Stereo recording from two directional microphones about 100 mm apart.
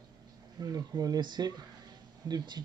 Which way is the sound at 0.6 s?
40° right (ahead or behind).